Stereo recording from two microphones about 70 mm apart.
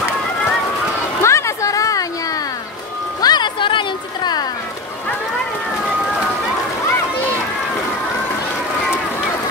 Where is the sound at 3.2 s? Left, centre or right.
Left.